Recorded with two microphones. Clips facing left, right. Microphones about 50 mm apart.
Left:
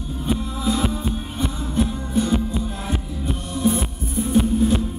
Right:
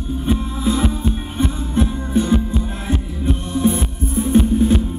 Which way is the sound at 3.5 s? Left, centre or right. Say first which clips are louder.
Right 3 dB; right.